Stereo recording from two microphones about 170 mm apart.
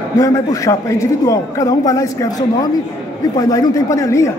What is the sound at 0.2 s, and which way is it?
A man's voice, 20° left (ahead or behind).